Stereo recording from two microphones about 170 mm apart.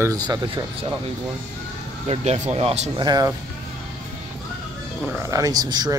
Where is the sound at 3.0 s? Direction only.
25° right (ahead or behind).